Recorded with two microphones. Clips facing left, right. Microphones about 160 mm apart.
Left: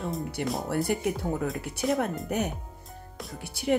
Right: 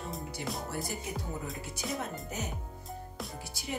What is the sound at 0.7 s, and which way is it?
Speech, 65° left (ahead or behind).